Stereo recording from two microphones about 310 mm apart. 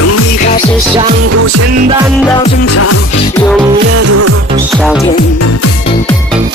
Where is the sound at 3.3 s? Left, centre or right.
Centre.